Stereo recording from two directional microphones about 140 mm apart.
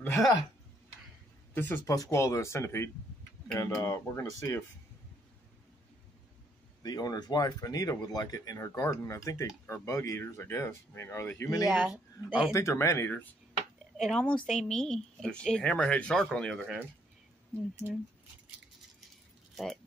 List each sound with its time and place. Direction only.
0.0 s speech: 20° left (ahead or behind)
1.5 s speech: 15° left (ahead or behind)
6.8 s speech: 30° left (ahead or behind)
11.6 s speech: 5° right (ahead or behind)
12.5 s speech: 20° left (ahead or behind)
13.9 s speech: centre (ahead or behind)
17.8 s speech: 20° left (ahead or behind)
19.5 s speech: centre (ahead or behind)